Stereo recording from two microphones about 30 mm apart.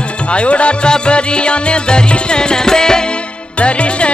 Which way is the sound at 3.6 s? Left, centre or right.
Left.